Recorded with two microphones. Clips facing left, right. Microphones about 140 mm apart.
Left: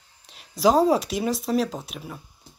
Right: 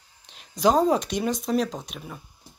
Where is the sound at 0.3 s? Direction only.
Centre (ahead or behind).